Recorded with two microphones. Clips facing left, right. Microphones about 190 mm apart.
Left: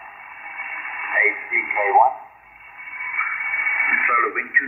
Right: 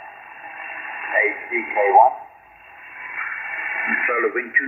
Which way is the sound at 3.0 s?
40° right (ahead or behind).